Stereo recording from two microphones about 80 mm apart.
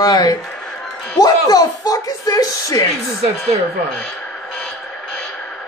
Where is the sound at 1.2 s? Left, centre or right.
Left.